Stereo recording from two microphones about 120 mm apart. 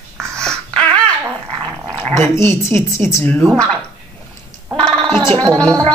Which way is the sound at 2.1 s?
20° left (ahead or behind).